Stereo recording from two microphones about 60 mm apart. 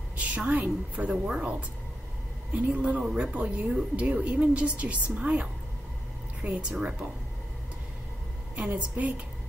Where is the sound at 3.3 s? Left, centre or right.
Right.